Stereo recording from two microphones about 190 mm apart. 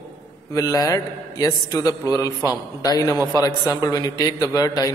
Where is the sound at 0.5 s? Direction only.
20° left (ahead or behind).